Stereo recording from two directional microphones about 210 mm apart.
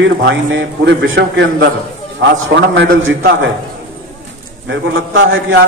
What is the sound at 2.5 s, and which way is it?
Speech, 65° right (ahead or behind).